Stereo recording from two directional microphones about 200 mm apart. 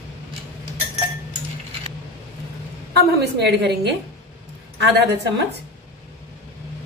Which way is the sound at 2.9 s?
55° right (ahead or behind).